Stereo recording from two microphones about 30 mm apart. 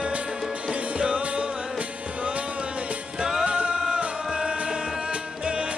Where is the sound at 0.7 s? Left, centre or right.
Right.